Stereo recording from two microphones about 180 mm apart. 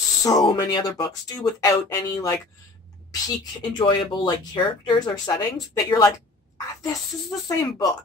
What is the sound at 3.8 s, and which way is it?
Speech, 25° left (ahead or behind).